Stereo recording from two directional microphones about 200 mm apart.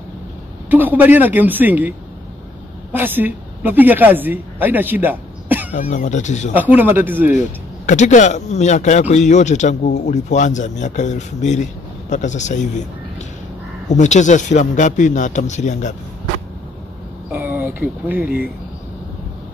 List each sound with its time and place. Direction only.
0.7 s a woman's voice: 10° right (ahead or behind)
5.7 s speech: 35° left (ahead or behind)
6.5 s a woman's voice: 10° right (ahead or behind)
7.3 s speech: 35° left (ahead or behind)
13.8 s speech: 35° left (ahead or behind)
17.3 s speech: 10° right (ahead or behind)